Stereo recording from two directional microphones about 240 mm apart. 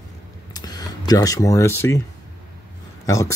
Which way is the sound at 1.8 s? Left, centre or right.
Centre.